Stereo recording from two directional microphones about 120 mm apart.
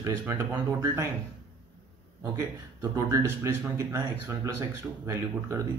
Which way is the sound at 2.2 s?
25° right (ahead or behind).